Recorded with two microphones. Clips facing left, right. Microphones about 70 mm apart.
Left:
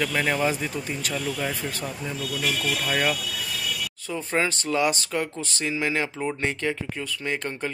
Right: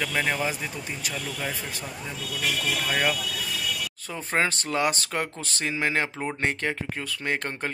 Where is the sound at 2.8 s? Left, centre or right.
Centre.